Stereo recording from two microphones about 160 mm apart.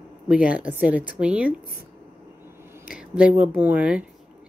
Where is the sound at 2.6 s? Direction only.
15° right (ahead or behind).